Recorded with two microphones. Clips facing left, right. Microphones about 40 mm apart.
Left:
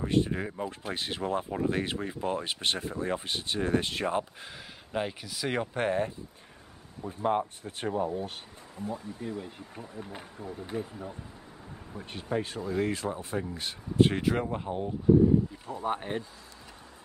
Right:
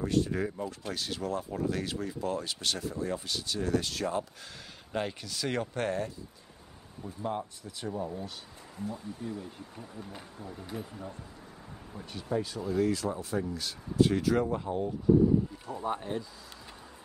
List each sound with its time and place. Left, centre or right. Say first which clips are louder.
0.0 s speech: left 1 dB; left
4.9 s speech: left 1 dB; centre
7.0 s speech: left 6 dB; left
8.8 s speech: left 2 dB; left
10.4 s speech: left 5 dB; centre
12.0 s speech: left 1 dB; left
15.6 s speech: left 2 dB; left